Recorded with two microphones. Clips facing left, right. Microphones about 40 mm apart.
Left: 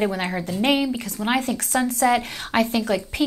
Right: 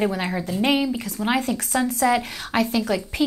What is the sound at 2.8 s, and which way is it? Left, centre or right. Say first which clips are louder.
Speech: even; centre.